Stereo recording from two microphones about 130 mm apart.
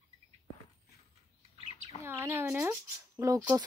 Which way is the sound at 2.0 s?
20° right (ahead or behind).